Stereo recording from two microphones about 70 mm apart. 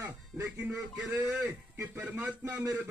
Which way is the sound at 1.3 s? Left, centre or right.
Right.